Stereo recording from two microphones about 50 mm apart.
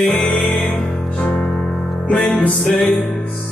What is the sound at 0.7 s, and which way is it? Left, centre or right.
Music, centre.